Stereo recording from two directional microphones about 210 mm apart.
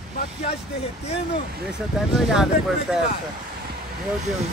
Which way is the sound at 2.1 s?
Centre (ahead or behind).